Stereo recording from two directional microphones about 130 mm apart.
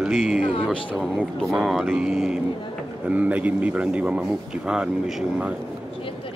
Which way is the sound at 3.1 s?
10° right (ahead or behind).